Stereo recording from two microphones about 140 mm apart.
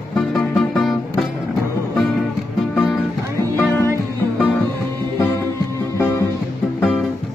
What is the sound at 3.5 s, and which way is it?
Music, 20° left (ahead or behind).